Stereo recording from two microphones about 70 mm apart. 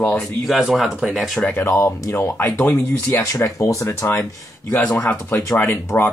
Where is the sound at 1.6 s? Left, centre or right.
Left.